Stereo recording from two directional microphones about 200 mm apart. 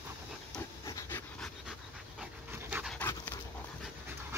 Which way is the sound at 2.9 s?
10° left (ahead or behind).